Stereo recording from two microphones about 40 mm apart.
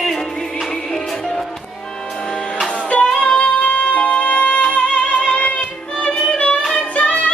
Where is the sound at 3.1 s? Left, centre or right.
Left.